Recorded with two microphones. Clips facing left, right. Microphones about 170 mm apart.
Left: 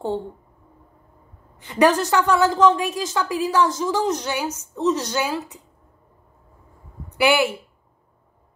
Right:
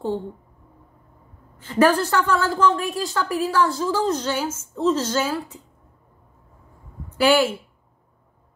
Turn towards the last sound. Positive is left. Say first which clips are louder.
# right 1 dB
turn(degrees=15)  # may be behind; listen again after turning